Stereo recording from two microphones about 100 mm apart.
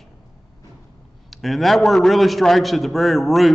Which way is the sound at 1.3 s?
Centre (ahead or behind).